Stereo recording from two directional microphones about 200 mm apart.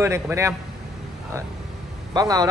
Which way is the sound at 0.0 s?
15° right (ahead or behind).